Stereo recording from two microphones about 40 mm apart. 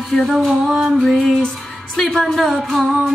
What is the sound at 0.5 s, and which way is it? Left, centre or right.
Music, centre.